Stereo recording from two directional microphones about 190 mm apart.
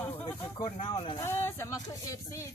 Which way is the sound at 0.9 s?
25° left (ahead or behind).